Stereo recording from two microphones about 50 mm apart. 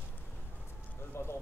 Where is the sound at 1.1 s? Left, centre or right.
Left.